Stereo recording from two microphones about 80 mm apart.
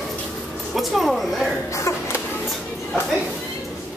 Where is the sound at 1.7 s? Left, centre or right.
Left.